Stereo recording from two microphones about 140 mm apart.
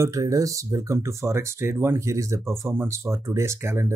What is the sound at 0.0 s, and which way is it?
Speech, 25° right (ahead or behind).